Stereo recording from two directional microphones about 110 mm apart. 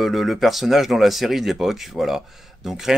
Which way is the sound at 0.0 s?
Centre (ahead or behind).